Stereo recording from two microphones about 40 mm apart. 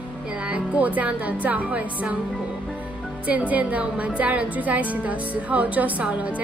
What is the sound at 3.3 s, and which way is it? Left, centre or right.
A woman's voice, right.